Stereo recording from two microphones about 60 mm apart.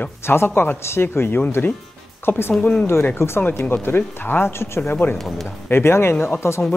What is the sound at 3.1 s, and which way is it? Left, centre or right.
Speech, left.